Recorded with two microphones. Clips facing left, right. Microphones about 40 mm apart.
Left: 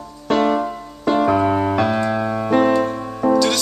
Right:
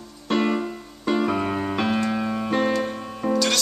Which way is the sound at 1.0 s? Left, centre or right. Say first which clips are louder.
Left 7 dB; left.